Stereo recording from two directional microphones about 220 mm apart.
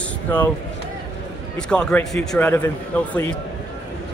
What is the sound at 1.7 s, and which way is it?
Speech, 5° left (ahead or behind).